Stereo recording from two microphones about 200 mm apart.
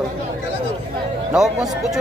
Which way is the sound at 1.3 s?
Centre (ahead or behind).